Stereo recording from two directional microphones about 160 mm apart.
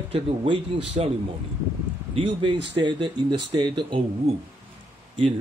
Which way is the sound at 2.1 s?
35° right (ahead or behind).